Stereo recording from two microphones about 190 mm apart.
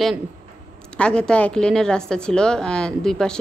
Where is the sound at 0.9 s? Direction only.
5° left (ahead or behind).